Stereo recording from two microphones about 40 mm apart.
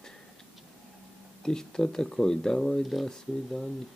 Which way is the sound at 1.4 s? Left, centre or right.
Centre.